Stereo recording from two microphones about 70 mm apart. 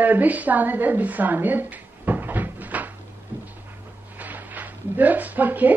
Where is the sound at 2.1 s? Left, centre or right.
Right.